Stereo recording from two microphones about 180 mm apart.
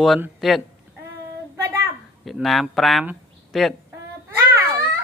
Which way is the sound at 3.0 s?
5° right (ahead or behind).